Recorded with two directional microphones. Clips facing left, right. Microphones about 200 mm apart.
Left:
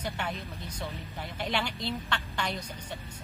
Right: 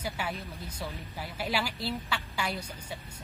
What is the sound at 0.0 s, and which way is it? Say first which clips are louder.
Speech: even; 5° right (ahead or behind).